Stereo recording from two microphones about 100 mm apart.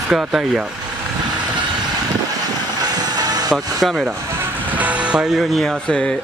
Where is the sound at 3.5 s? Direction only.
Centre (ahead or behind).